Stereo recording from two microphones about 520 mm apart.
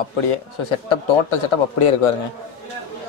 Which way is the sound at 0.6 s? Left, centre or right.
Left.